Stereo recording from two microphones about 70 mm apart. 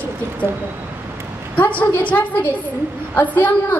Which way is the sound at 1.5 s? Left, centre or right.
Left.